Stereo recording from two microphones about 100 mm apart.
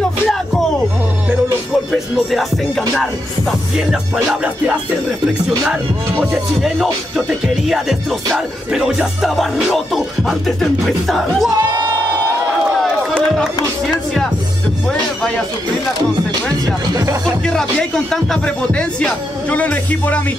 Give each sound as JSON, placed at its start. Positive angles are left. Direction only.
{"t": 1.9, "sound": "music", "side_deg": 0}
{"t": 6.6, "sound": "music", "side_deg": 0}
{"t": 11.5, "sound": "speech", "side_deg": -45}
{"t": 16.9, "sound": "music", "side_deg": -30}
{"t": 17.5, "sound": "speech", "side_deg": 5}